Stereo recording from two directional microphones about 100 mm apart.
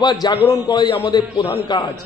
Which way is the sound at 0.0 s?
45° left (ahead or behind).